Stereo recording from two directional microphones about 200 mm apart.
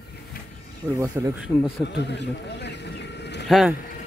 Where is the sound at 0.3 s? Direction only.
45° left (ahead or behind).